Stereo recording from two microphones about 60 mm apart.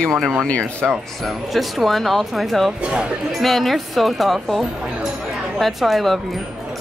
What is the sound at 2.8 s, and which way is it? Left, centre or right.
Speech, centre.